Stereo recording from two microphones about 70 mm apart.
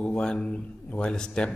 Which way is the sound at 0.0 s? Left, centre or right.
Centre.